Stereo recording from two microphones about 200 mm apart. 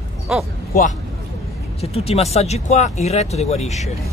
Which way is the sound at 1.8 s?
30° left (ahead or behind).